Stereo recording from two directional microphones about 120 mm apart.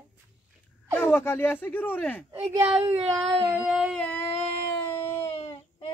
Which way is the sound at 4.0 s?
10° left (ahead or behind).